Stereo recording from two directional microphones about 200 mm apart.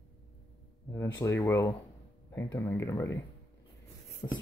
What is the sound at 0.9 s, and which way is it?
Speech, 15° left (ahead or behind).